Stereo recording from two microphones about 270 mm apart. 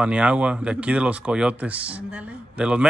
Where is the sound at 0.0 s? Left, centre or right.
Centre.